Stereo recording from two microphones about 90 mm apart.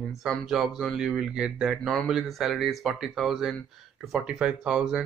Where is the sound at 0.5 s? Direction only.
Centre (ahead or behind).